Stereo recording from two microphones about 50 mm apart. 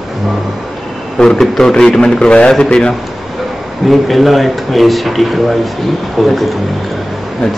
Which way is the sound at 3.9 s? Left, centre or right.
Centre.